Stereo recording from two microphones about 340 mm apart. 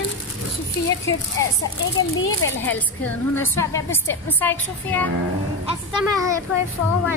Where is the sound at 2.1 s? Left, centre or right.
Left.